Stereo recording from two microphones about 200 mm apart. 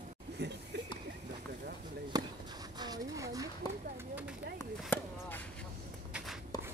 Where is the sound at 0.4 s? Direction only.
55° right (ahead or behind).